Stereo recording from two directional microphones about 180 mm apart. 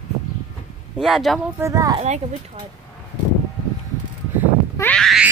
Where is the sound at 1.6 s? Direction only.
20° right (ahead or behind).